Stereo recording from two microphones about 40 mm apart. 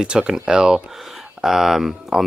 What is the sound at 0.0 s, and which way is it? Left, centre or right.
Speech, right.